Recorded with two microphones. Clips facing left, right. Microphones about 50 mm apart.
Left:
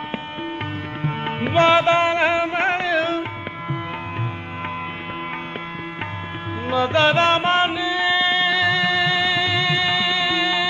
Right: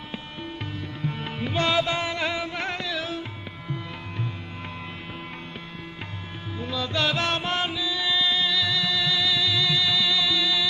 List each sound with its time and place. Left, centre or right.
1.0 s music: left
6.6 s music: left